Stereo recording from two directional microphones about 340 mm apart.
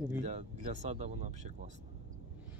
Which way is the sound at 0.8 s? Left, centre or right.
Centre.